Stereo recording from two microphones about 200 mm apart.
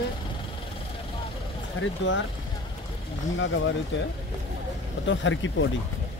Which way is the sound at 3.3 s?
70° left (ahead or behind).